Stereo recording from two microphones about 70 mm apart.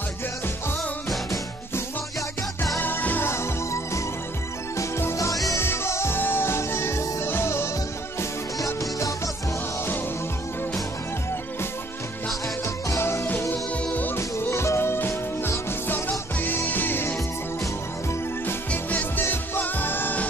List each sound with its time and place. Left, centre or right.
2.8 s music: left
3.3 s music: left
5.6 s music: left
8.6 s music: left
12.6 s music: left
13.8 s music: left
14.1 s music: left
18.7 s music: left